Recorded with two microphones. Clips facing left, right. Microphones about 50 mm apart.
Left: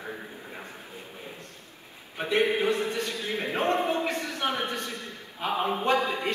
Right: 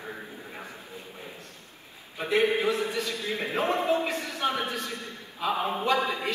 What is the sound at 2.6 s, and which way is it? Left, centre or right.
A man's voice, left.